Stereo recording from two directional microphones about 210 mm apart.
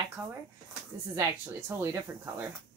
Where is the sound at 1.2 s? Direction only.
15° right (ahead or behind).